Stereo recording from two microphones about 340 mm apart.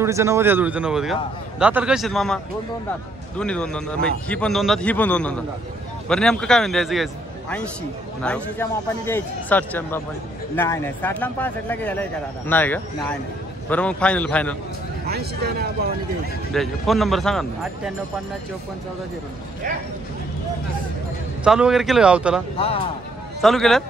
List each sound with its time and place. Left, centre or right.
0.0 s a man's voice: centre
15.0 s speech: right
16.5 s a man's voice: centre
21.5 s a man's voice: centre
23.4 s a man's voice: centre